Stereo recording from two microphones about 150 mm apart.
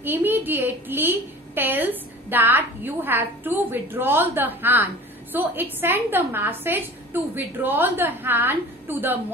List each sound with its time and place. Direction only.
0.0 s a woman's voice: 15° right (ahead or behind)